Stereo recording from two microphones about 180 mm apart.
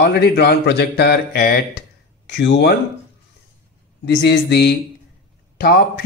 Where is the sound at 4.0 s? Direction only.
70° left (ahead or behind).